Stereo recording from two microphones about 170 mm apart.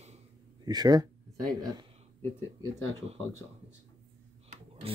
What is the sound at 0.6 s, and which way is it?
Speech, 25° right (ahead or behind).